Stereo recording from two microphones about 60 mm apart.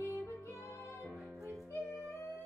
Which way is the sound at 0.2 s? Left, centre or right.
Left.